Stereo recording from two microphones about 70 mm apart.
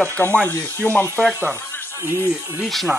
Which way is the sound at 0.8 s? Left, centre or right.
Centre.